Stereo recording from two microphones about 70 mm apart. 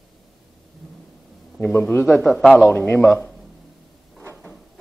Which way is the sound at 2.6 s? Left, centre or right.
Left.